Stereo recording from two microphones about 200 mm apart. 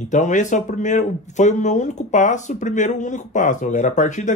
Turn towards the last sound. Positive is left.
turn(degrees=35)  # may be behind; listen again after turning